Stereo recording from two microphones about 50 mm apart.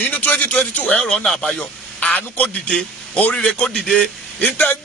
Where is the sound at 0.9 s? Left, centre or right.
Centre.